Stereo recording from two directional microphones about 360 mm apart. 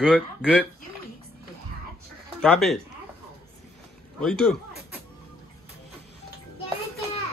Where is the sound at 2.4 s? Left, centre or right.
Centre.